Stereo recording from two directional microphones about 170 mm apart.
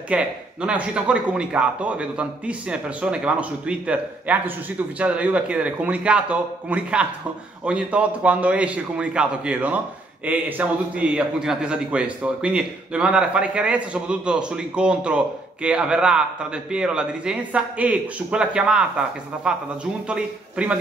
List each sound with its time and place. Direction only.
0.1 s speech: 5° right (ahead or behind)